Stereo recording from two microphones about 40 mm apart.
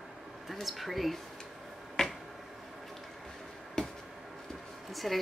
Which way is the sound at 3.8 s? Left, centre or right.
Centre.